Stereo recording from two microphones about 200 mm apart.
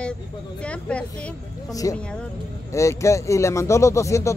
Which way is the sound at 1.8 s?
15° left (ahead or behind).